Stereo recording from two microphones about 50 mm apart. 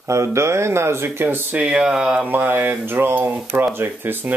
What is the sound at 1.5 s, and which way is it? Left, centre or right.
Speech, right.